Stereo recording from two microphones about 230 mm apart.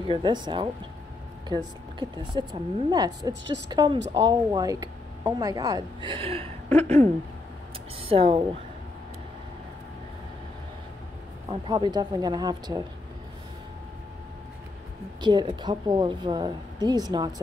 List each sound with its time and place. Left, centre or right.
0.0 s speech: centre
11.4 s speech: centre
15.2 s speech: centre